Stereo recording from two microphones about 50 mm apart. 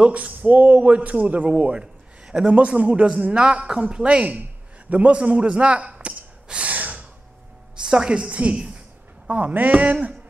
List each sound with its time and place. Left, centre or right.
0.0 s a man's voice: right
2.5 s a man's voice: right
4.4 s a sound: right
7.8 s a man's voice: centre
9.3 s a man's voice: right